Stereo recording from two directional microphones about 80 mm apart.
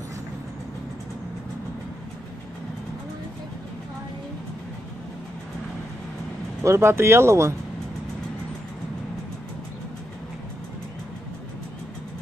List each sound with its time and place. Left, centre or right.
6.6 s speech: right